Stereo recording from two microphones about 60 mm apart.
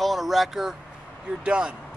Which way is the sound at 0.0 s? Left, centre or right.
Centre.